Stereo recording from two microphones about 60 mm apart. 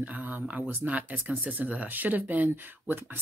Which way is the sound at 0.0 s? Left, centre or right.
Right.